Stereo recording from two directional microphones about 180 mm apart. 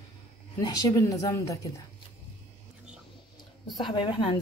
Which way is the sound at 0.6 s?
20° left (ahead or behind).